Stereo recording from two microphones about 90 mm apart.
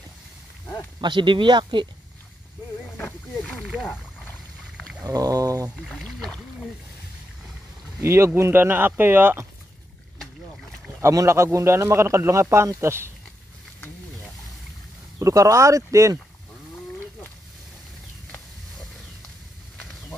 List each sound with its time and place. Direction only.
1.0 s speech: 65° right (ahead or behind)
3.4 s speech: 5° left (ahead or behind)
3.8 s a sound: 20° left (ahead or behind)
5.0 s speech: 40° right (ahead or behind)
5.8 s speech: centre (ahead or behind)
8.0 s speech: 30° right (ahead or behind)
11.0 s speech: 30° right (ahead or behind)
15.1 s speech: 35° right (ahead or behind)